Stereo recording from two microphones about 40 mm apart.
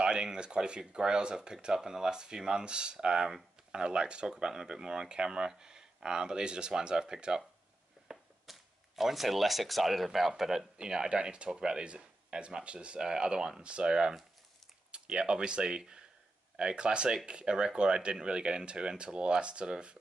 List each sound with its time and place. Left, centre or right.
0.0 s speech: right
8.1 s speech: centre
10.8 s speech: centre